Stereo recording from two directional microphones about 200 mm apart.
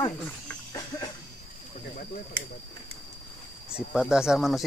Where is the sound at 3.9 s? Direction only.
5° right (ahead or behind).